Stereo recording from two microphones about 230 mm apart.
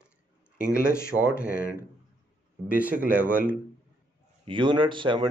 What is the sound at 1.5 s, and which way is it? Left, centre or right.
Speech, left.